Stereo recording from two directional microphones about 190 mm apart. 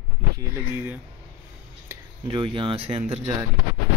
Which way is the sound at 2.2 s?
30° right (ahead or behind).